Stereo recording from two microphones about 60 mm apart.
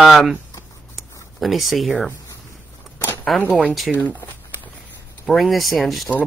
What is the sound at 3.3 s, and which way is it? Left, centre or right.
Speech, centre.